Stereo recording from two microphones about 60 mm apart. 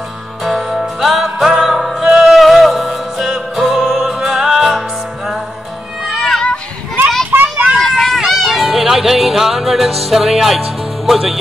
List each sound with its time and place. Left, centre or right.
0.4 s music: centre
6.0 s music: centre
7.3 s children playing: right
7.7 s run: centre
8.2 s music: centre